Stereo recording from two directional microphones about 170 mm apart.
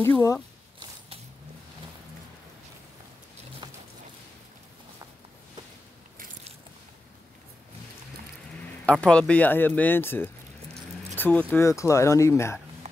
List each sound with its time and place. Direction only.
0.0 s speech: 15° left (ahead or behind)
3.6 s a sound: 25° right (ahead or behind)
8.8 s speech: 5° left (ahead or behind)
10.7 s keys jangling: 10° left (ahead or behind)
11.5 s speech: 15° left (ahead or behind)